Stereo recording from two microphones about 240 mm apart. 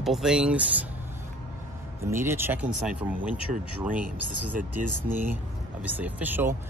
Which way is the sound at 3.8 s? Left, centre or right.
Centre.